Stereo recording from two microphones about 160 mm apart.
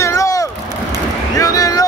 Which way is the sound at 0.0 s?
20° left (ahead or behind).